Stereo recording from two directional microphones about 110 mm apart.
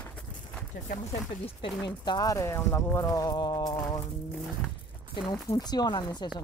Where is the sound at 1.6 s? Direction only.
45° left (ahead or behind).